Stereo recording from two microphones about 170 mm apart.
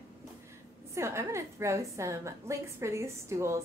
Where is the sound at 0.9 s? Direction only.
15° right (ahead or behind).